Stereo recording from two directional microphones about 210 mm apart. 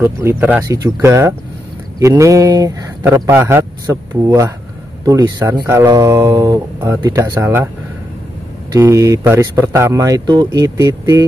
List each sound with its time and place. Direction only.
0.0 s speech: 10° right (ahead or behind)
8.7 s speech: 15° right (ahead or behind)